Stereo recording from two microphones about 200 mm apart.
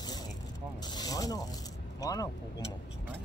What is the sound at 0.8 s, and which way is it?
Zipper, 20° left (ahead or behind).